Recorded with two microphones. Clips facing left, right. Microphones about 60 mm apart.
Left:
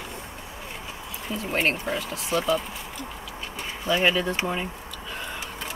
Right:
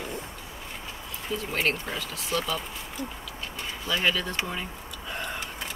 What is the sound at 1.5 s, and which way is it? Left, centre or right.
Speech, left.